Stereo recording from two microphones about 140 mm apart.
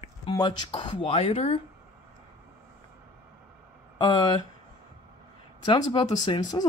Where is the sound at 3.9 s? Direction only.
35° left (ahead or behind).